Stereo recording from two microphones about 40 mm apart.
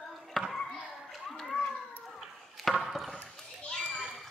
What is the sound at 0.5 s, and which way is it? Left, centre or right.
Children playing, centre.